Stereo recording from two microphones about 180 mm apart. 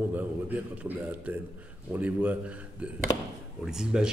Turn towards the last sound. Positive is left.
turn(degrees=-5)  # may be behind; listen again after turning